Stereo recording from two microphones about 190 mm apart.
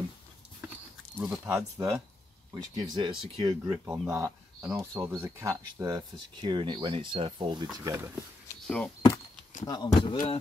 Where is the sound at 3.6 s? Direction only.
15° right (ahead or behind).